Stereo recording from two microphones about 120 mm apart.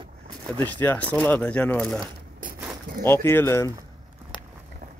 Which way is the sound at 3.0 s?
20° left (ahead or behind).